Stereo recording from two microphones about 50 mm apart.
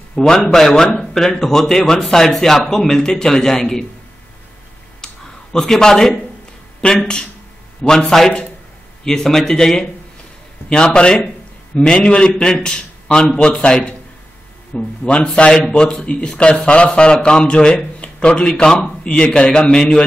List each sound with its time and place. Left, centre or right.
0.1 s a man's voice: centre
5.0 s a sound: centre
6.8 s a man's voice: left